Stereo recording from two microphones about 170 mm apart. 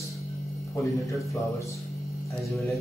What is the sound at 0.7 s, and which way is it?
Speech, 20° left (ahead or behind).